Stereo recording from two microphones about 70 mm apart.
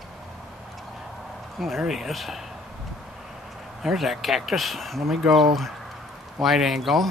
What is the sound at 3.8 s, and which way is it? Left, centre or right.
Speech, centre.